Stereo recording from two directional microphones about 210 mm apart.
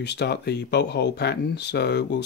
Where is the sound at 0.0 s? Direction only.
50° left (ahead or behind).